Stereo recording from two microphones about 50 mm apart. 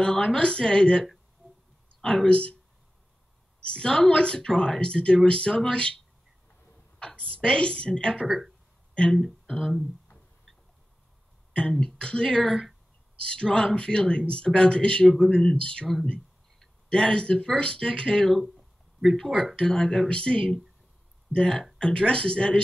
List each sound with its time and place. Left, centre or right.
0.0 s speech: centre
3.6 s speech: centre
7.0 s speech: centre
8.3 s speech: centre
9.1 s speech: centre
12.0 s speech: centre
12.4 s speech: centre
13.3 s speech: centre
15.6 s speech: left
16.9 s speech: centre
19.5 s speech: centre